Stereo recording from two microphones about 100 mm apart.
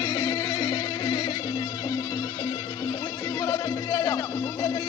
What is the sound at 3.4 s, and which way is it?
Music, 40° left (ahead or behind).